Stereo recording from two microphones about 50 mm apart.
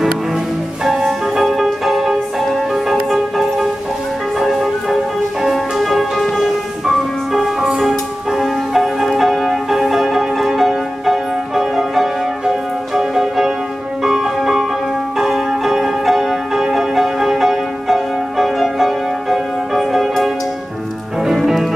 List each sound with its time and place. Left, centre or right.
0.8 s music: centre
7.3 s music: centre